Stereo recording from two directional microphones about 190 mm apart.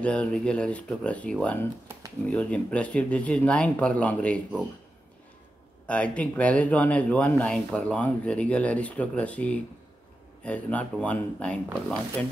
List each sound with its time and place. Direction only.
0.0 s speech: 5° left (ahead or behind)
5.9 s speech: 5° left (ahead or behind)